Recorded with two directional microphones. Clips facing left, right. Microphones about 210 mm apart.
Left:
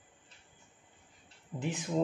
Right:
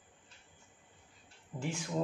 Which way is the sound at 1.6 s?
20° left (ahead or behind).